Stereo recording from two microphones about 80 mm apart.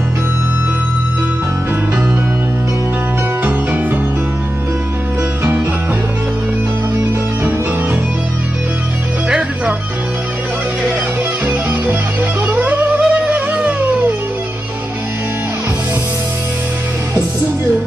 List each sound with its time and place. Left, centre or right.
3.4 s music: right
12.4 s music: centre